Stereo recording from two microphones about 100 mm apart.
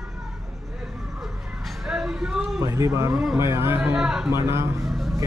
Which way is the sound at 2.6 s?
30° right (ahead or behind).